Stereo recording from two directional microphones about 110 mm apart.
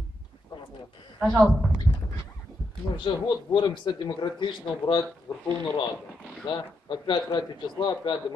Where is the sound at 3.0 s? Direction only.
45° left (ahead or behind).